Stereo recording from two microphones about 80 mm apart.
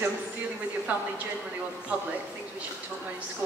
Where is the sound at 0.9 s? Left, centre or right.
Centre.